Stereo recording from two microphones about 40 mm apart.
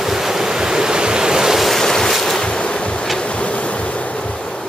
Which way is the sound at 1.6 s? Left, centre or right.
Centre.